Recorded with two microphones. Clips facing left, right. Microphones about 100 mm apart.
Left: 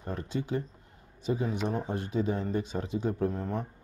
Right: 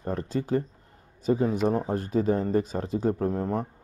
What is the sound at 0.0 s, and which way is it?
Speech, 40° right (ahead or behind).